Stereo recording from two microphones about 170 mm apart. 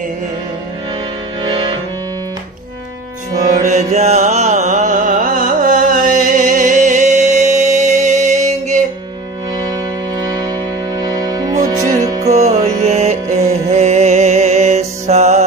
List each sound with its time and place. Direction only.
1.4 s music: 25° right (ahead or behind)
3.4 s mantra: 45° right (ahead or behind)
11.2 s music: 20° right (ahead or behind)
12.3 s music: 40° right (ahead or behind)